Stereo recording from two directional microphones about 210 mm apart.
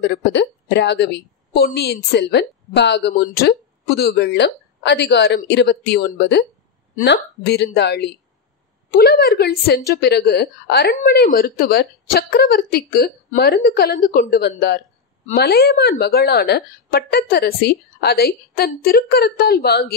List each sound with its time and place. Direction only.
0.0 s a woman's voice: 55° left (ahead or behind)